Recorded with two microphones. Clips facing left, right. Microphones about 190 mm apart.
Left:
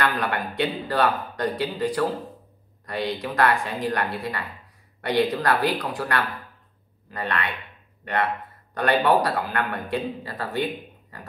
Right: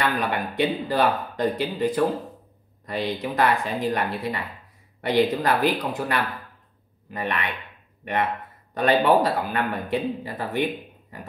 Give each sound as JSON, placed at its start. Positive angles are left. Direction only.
{"t": 0.0, "sound": "speech", "side_deg": -20}